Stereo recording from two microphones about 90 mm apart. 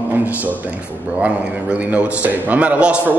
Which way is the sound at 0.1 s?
20° right (ahead or behind).